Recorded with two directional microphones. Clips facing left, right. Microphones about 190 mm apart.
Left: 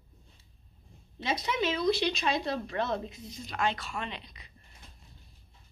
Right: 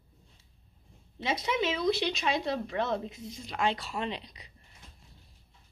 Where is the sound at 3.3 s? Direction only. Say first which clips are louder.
Right 1 dB; 25° right (ahead or behind).